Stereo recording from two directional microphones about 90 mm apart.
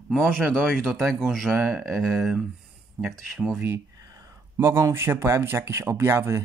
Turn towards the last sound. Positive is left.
turn(degrees=-30)  # may be behind; listen again after turning